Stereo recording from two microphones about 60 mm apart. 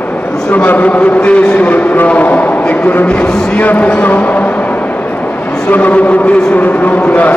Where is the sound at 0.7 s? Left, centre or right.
Left.